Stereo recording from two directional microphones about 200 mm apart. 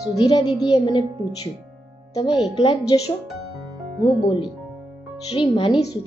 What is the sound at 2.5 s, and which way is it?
Speech, 20° left (ahead or behind).